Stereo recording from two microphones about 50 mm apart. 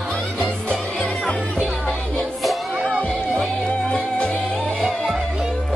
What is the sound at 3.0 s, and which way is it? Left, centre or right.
Music, centre.